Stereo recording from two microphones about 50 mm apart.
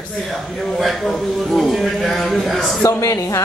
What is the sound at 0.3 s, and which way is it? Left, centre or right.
A man's voice, centre.